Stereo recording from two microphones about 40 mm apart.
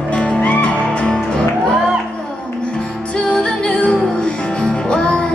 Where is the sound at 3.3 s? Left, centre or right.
Left.